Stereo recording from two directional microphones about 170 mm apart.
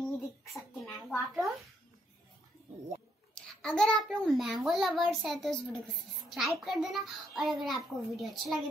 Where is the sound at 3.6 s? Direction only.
5° left (ahead or behind).